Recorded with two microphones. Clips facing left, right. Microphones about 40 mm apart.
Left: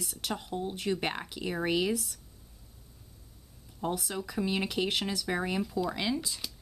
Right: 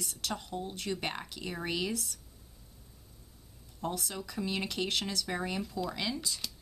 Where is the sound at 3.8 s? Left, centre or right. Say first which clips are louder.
Left 3 dB; centre.